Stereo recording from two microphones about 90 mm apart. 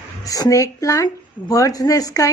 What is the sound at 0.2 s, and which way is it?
Speech, 40° left (ahead or behind).